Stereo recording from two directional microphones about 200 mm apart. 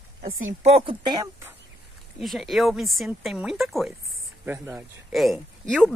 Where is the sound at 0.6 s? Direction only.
25° right (ahead or behind).